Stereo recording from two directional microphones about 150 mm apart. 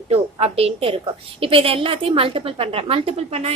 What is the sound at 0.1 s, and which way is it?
A woman's voice, 45° right (ahead or behind).